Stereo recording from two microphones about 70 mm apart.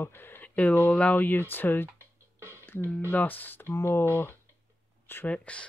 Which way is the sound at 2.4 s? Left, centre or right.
Right.